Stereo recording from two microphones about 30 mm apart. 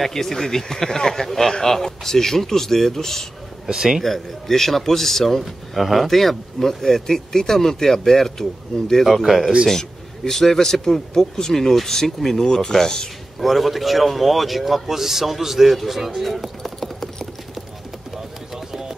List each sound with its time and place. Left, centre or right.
0.0 s speech: centre
3.6 s a man's voice: centre
4.0 s speech: centre
5.4 s speech: centre
9.0 s a man's voice: centre
9.7 s speech: centre
13.4 s a man's voice: centre
18.1 s a sound: centre